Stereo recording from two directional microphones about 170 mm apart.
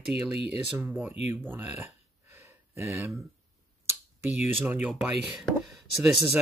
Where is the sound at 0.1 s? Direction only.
75° right (ahead or behind).